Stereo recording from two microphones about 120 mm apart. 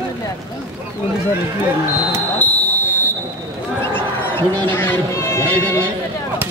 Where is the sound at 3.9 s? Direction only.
15° left (ahead or behind).